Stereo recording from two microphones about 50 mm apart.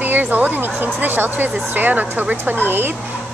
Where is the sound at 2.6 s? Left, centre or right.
Right.